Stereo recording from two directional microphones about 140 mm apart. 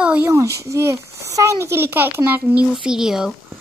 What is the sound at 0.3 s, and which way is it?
A child's voice, 20° right (ahead or behind).